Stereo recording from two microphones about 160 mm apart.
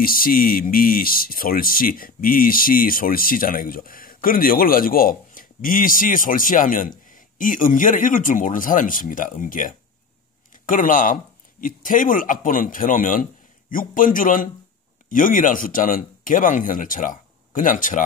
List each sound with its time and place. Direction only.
0.0 s speech: 65° left (ahead or behind)